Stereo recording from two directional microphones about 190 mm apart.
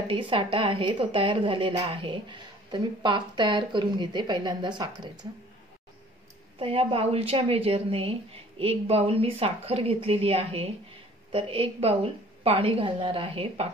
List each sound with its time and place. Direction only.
0.1 s a woman's voice: 25° right (ahead or behind)
6.6 s a woman's voice: 30° right (ahead or behind)